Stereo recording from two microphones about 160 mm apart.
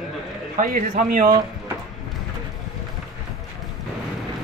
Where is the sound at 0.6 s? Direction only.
60° right (ahead or behind).